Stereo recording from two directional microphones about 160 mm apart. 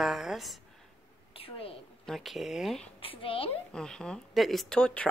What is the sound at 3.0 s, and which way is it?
Speech, 35° left (ahead or behind).